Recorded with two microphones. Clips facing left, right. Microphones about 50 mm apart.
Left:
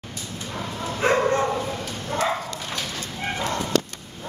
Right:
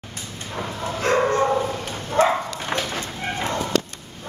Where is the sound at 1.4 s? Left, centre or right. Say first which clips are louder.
Right 4 dB; centre.